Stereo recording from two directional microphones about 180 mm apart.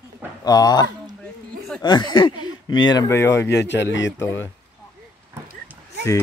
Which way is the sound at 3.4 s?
70° left (ahead or behind).